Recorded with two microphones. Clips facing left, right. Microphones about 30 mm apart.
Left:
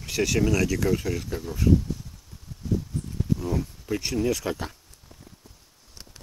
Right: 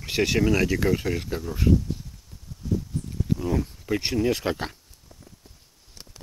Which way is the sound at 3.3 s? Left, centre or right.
Centre.